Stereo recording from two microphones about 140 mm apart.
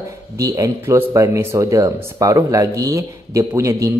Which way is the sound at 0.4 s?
20° right (ahead or behind).